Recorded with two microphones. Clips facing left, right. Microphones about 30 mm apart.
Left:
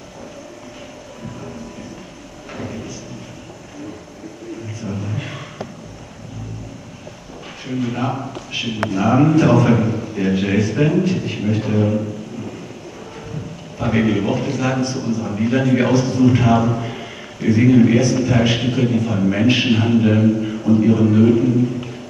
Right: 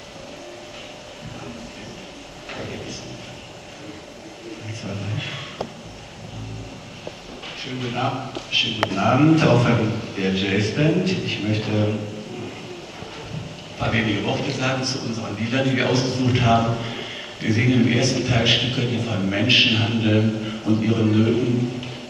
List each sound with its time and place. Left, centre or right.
2.5 s a sound: right
4.8 s a sound: right
7.8 s a man's voice: right
8.3 s a man's voice: right
10.8 s a man's voice: right
11.1 s a man's voice: right
13.7 s a man's voice: right
15.4 s a man's voice: right
16.8 s a sound: right
17.5 s a man's voice: right
20.1 s a sound: right
20.9 s a man's voice: right
21.5 s music: right